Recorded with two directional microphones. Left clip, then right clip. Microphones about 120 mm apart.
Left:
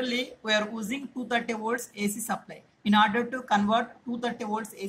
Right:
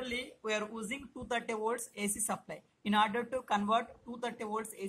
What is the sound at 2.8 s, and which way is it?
Speech, 60° right (ahead or behind).